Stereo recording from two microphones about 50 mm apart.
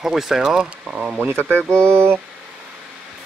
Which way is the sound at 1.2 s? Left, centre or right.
Right.